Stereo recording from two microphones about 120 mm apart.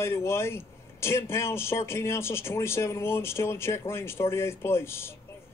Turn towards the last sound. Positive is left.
turn(degrees=20)  # may be behind; listen again after turning